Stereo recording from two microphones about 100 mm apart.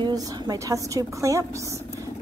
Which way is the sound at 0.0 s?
40° right (ahead or behind).